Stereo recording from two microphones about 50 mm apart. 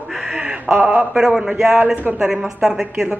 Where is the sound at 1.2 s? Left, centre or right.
Centre.